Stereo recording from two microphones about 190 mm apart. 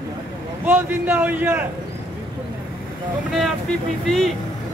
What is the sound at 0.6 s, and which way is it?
Speech, 10° right (ahead or behind).